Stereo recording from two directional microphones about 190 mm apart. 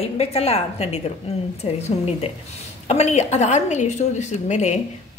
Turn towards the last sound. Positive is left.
turn(degrees=35)  # may be behind; listen again after turning